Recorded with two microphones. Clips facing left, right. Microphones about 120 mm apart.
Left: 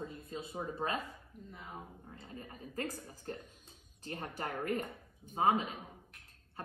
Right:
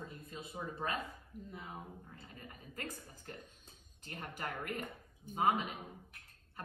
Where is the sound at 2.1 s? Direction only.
35° left (ahead or behind).